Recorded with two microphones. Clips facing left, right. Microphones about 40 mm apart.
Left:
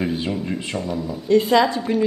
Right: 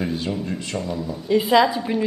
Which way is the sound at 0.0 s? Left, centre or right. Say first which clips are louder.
Left 2 dB; centre.